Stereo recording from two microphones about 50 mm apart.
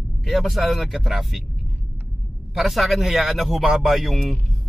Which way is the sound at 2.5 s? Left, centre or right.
Centre.